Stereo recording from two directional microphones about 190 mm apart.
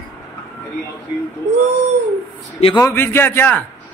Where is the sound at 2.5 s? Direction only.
30° left (ahead or behind).